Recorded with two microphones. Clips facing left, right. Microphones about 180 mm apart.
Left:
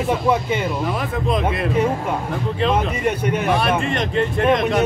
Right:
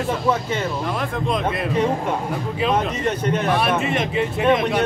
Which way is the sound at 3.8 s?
5° right (ahead or behind).